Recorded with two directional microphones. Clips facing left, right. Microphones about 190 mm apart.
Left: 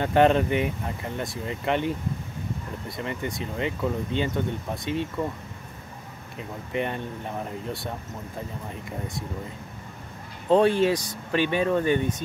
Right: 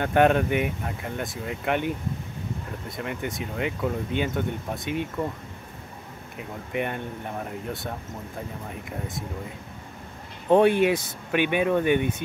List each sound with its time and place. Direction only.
0.0 s speech: 5° right (ahead or behind)
3.0 s speech: 5° right (ahead or behind)
10.5 s speech: 20° right (ahead or behind)